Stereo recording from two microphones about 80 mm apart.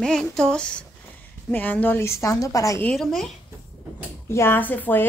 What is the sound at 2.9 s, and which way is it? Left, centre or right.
Speech, centre.